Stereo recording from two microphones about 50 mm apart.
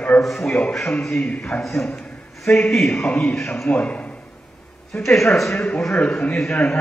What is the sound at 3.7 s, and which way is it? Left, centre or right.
Speech, left.